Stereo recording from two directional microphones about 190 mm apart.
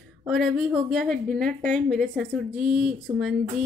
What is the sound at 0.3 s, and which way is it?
A woman's voice, centre (ahead or behind).